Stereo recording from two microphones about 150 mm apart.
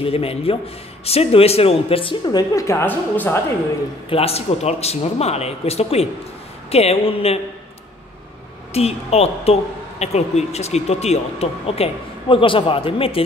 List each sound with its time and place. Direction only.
0.0 s speech: 40° left (ahead or behind); by 3.3 s 15° left (ahead or behind)
4.1 s a woman's voice: 40° left (ahead or behind)
8.7 s a woman's voice: 45° left (ahead or behind)